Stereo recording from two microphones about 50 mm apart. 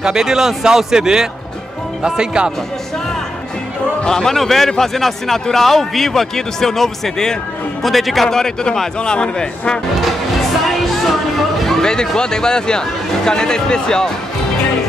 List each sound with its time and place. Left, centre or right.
0.0 s speech: centre
4.0 s a man's voice: centre
11.6 s speech: centre